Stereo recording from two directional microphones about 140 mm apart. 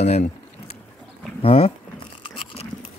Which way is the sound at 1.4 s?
45° left (ahead or behind).